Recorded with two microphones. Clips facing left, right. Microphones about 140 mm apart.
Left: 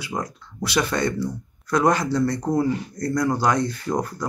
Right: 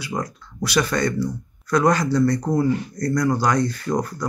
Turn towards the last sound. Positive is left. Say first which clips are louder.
# right 1 dB
turn(degrees=25)  # may be behind; listen again after turning